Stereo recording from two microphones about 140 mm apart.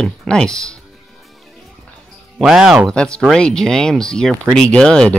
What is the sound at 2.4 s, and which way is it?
Speech, 5° right (ahead or behind).